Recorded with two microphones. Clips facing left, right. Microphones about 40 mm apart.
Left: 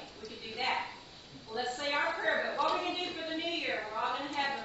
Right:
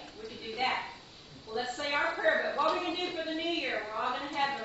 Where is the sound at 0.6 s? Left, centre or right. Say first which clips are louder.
Right 2 dB; centre.